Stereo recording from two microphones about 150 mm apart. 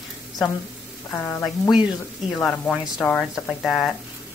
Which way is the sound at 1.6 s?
5° right (ahead or behind).